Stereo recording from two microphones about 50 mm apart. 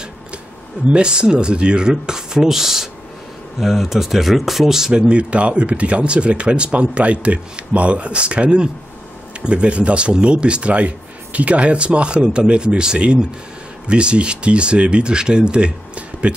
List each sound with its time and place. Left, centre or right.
0.9 s a man's voice: centre
5.0 s speech: right